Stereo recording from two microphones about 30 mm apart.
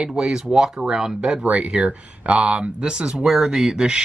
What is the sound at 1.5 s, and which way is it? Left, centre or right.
Speech, right.